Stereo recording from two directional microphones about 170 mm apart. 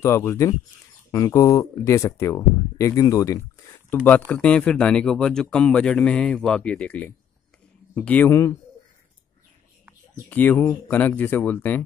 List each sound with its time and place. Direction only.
0.0 s speech: 15° left (ahead or behind)
10.3 s speech: 10° left (ahead or behind)